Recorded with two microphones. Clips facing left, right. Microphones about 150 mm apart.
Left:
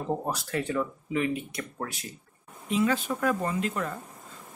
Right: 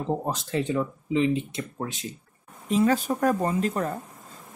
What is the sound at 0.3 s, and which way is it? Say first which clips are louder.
Speech: right 3 dB; 20° right (ahead or behind).